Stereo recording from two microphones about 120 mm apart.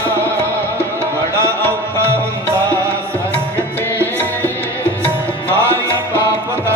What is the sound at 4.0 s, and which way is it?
Music, 15° left (ahead or behind).